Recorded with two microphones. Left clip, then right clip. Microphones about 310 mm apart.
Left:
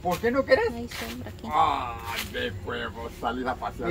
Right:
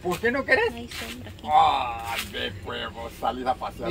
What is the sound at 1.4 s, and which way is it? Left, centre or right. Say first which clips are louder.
Speech: right 4 dB; centre.